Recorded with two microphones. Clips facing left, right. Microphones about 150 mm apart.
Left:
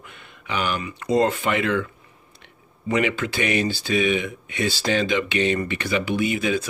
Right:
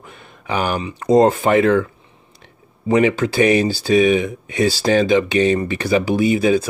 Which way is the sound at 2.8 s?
35° right (ahead or behind).